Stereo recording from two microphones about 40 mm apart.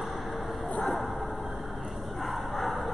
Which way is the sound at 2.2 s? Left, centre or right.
Centre.